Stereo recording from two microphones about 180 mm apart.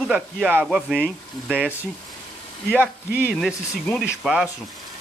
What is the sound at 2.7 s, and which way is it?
Speech, 10° right (ahead or behind).